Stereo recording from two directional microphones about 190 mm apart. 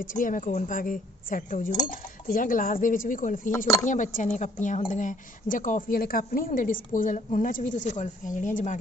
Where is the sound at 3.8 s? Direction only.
40° left (ahead or behind).